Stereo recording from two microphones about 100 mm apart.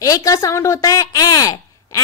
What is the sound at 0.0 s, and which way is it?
A woman's voice, 35° left (ahead or behind).